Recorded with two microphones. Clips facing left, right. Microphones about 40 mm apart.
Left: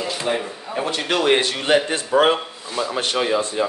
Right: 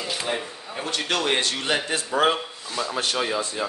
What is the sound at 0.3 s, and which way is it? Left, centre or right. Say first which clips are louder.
Speech: left 5 dB; centre.